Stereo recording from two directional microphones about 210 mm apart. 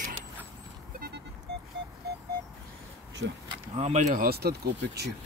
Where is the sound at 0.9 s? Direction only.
50° right (ahead or behind).